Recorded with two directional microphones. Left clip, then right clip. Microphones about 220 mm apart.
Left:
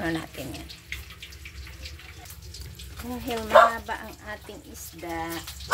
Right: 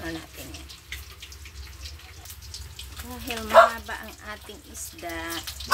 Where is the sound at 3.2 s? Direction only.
5° left (ahead or behind).